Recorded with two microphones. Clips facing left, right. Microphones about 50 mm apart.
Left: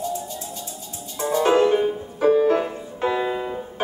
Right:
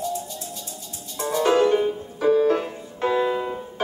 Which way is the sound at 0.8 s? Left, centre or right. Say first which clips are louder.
Left 2 dB; left.